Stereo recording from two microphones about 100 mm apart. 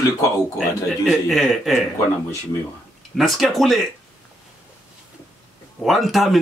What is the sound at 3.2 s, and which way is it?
Speech, centre (ahead or behind).